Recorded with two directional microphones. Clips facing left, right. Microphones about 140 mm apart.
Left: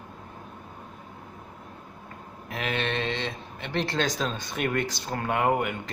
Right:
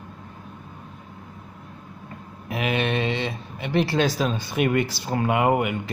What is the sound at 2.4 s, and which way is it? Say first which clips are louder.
Speech: right 5 dB; 10° right (ahead or behind).